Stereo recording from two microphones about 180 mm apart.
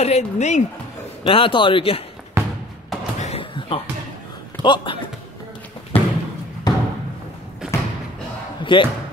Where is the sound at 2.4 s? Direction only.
15° right (ahead or behind).